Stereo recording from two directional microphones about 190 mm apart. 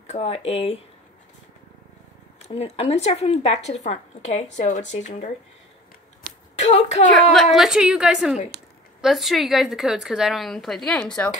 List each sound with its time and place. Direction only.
0.0 s speech: 35° left (ahead or behind)
2.4 s speech: 35° left (ahead or behind)
6.6 s speech: 35° left (ahead or behind)
7.5 s a woman's voice: 5° right (ahead or behind)